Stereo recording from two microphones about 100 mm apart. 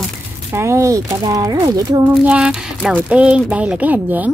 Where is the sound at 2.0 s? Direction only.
10° right (ahead or behind).